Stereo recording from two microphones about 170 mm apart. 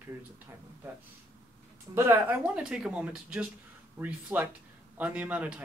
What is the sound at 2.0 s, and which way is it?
Speech, 10° right (ahead or behind).